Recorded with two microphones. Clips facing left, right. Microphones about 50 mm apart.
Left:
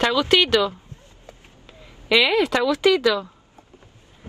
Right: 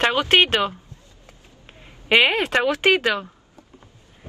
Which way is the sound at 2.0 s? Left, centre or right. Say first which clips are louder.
Even; right.